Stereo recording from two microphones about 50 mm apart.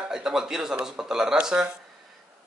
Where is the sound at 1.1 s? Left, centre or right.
Centre.